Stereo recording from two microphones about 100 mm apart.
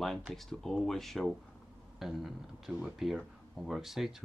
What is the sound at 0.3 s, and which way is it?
Speech, 5° left (ahead or behind).